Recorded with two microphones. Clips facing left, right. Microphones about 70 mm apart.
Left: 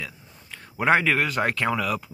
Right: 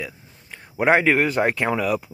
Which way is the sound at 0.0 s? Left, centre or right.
Centre.